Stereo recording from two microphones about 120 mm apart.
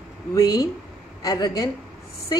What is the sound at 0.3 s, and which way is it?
A man's voice, 30° left (ahead or behind).